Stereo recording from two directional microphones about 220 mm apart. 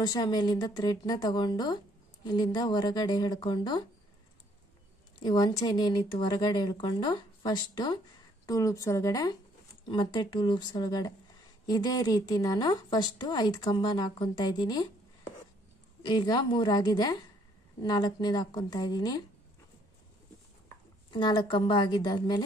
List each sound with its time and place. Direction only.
0.0 s a woman's voice: 20° left (ahead or behind)
5.2 s a woman's voice: 15° left (ahead or behind)
16.0 s a woman's voice: 20° left (ahead or behind)
21.1 s a woman's voice: 20° left (ahead or behind)